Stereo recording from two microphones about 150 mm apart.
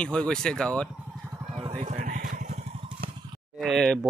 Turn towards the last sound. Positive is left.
turn(degrees=0)  # may be behind; listen again after turning